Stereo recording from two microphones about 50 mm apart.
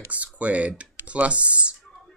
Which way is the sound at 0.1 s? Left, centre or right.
Right.